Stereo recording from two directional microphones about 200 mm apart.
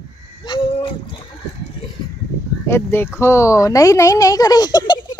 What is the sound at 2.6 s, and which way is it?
Speech, 10° left (ahead or behind).